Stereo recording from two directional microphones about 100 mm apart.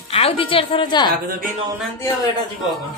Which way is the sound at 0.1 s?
70° left (ahead or behind).